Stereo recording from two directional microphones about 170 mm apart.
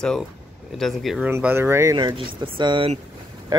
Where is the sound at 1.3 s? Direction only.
15° right (ahead or behind).